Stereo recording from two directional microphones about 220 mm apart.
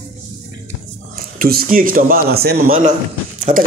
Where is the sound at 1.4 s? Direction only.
40° right (ahead or behind).